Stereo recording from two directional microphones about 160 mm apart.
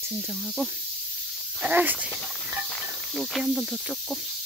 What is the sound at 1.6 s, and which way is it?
Speech, 10° right (ahead or behind).